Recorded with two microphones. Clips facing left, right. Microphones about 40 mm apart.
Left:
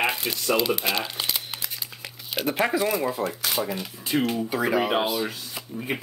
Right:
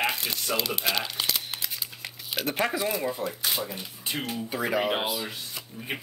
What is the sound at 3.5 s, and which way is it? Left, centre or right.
Speech, left.